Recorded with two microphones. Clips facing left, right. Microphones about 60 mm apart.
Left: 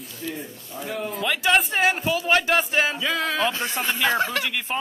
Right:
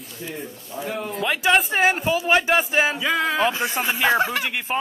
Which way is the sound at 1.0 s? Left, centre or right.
Centre.